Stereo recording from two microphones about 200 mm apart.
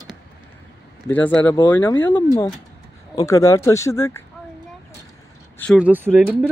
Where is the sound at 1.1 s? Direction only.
10° left (ahead or behind).